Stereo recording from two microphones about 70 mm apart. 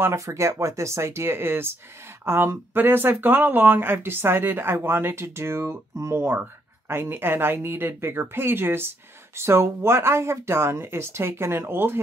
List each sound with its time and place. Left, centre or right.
0.0 s speech: right